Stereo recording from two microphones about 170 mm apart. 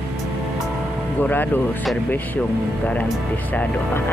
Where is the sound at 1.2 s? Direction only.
10° left (ahead or behind).